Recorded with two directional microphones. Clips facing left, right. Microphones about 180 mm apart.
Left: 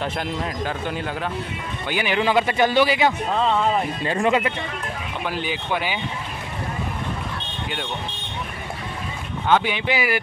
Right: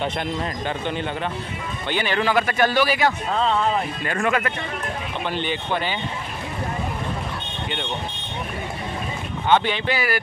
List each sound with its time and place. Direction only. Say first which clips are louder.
0.0 s speech: right 1 dB; 5° left (ahead or behind)
5.3 s speech: right 1 dB; 5° left (ahead or behind)
9.5 s speech: even; 10° left (ahead or behind)